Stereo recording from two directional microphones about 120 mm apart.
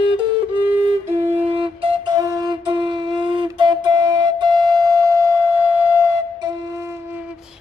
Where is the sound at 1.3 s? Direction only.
55° right (ahead or behind).